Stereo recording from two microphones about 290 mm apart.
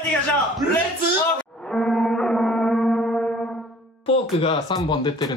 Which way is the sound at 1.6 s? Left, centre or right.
Centre.